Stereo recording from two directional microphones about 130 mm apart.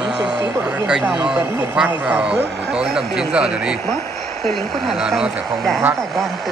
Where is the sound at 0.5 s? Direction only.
15° right (ahead or behind).